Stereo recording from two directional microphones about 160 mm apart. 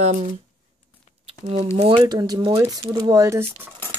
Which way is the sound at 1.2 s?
35° right (ahead or behind).